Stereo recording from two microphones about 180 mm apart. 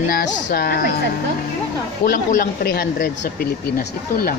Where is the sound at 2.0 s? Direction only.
50° left (ahead or behind).